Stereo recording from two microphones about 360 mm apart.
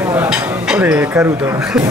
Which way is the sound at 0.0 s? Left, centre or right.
Centre.